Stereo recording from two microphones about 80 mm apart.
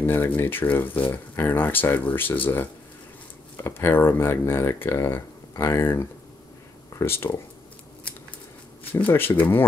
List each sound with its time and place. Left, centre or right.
0.0 s speech: left
8.9 s speech: left